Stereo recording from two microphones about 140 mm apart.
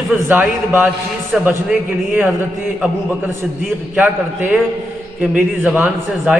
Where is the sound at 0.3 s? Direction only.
15° right (ahead or behind).